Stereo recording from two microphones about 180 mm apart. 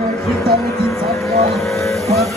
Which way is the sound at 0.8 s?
15° left (ahead or behind).